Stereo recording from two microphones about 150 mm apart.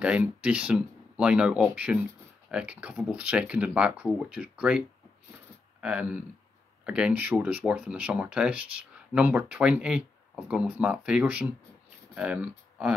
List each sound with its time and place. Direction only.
0.0 s speech: 10° right (ahead or behind)